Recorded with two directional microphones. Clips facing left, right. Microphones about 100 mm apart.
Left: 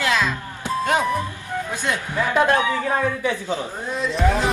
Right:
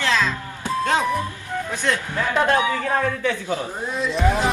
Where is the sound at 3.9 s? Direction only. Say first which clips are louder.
Even; centre (ahead or behind).